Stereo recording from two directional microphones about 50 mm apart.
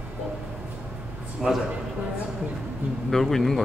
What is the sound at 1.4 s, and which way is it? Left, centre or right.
Speech, centre.